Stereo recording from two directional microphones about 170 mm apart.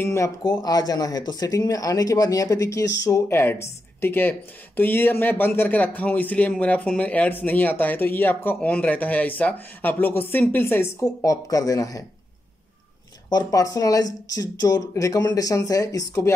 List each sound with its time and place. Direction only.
0.0 s speech: 15° left (ahead or behind)
13.3 s speech: 20° left (ahead or behind)